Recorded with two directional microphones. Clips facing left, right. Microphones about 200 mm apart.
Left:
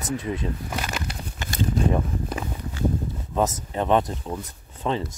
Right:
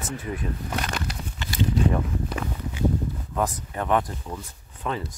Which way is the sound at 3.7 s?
25° left (ahead or behind).